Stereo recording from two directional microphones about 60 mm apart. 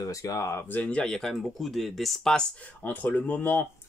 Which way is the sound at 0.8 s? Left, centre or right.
Centre.